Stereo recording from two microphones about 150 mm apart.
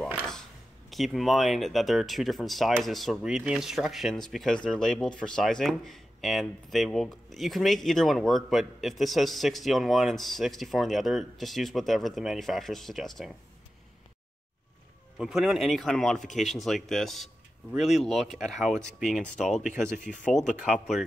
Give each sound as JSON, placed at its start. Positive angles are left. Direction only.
{"t": 0.8, "sound": "speech", "side_deg": 0}
{"t": 15.1, "sound": "speech", "side_deg": -5}
{"t": 19.7, "sound": "speech", "side_deg": 60}
{"t": 20.3, "sound": "speech", "side_deg": 0}